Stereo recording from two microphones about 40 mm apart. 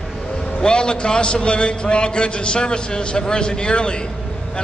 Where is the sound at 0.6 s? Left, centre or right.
Left.